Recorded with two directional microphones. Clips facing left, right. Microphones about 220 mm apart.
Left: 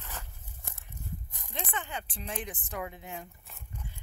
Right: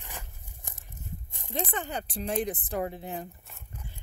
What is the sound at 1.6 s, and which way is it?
Speech, 40° right (ahead or behind).